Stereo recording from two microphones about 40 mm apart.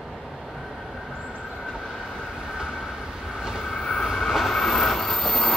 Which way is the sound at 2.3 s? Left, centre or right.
Centre.